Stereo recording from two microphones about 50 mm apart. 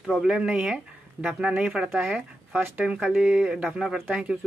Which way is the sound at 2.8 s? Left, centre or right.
Centre.